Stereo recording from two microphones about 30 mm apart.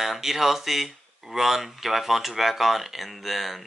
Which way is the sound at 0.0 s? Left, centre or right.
Centre.